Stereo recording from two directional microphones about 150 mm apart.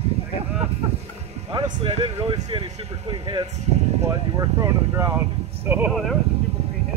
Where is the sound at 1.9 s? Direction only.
45° right (ahead or behind).